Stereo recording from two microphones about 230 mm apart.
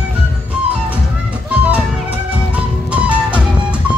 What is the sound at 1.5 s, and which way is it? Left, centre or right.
Music, centre.